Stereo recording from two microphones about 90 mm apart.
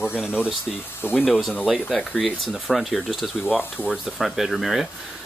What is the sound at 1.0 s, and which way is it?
Speech, 20° left (ahead or behind).